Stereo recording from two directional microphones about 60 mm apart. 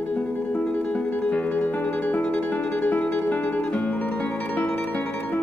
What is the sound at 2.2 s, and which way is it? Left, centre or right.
Music, left.